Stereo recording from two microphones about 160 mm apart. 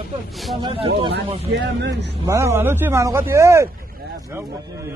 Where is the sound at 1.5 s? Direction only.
90° right.